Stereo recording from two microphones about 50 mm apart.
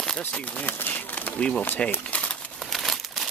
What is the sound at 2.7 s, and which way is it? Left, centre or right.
Crumpling, centre.